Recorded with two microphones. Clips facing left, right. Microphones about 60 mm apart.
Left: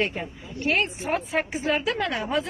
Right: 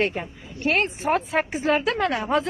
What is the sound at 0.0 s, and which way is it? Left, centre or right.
Speech, right.